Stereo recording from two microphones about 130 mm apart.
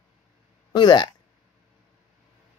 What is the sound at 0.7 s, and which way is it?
Speech, 35° left (ahead or behind).